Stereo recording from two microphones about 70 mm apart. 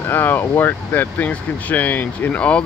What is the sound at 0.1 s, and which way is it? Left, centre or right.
Speech, left.